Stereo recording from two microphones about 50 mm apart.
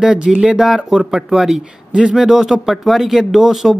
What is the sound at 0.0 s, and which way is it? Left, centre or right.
Speech, centre.